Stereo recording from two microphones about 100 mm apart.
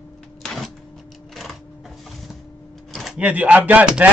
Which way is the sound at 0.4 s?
5° left (ahead or behind).